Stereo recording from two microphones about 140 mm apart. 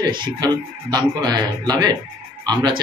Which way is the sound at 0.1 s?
30° right (ahead or behind).